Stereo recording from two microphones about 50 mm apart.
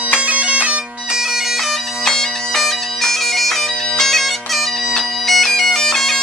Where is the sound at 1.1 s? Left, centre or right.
Centre.